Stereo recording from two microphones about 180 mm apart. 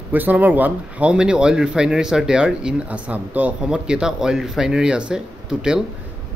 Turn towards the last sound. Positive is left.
turn(degrees=-5)  # may be behind; listen again after turning